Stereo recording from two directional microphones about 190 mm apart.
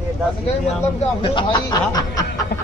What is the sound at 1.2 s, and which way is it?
Speech, 25° left (ahead or behind).